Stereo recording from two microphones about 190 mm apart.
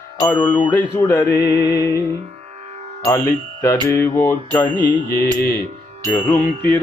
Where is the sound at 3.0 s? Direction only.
15° left (ahead or behind).